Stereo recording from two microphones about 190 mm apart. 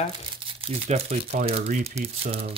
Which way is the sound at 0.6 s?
35° right (ahead or behind).